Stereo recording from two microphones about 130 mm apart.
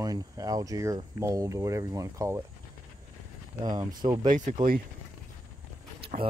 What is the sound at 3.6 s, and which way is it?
Speech, 30° right (ahead or behind).